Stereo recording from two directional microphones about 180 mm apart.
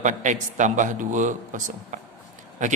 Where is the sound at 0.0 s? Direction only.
45° right (ahead or behind).